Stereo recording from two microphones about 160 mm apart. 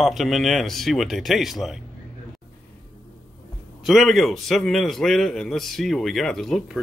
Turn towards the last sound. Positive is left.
turn(degrees=0)  # may be behind; listen again after turning